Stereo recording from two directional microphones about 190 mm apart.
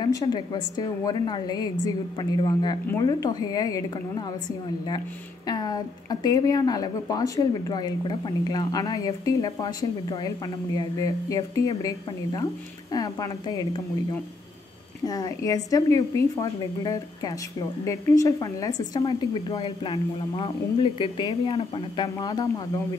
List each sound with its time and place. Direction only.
0.0 s speech: 20° left (ahead or behind)
5.5 s speech: 20° left (ahead or behind)
15.0 s speech: 20° left (ahead or behind)